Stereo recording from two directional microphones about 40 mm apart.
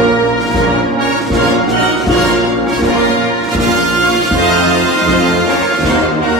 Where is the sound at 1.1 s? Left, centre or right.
Centre.